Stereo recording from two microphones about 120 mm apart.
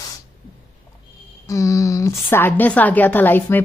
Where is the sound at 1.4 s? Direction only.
30° left (ahead or behind).